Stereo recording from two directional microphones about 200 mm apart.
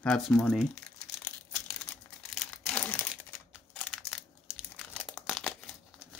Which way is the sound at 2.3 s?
Centre (ahead or behind).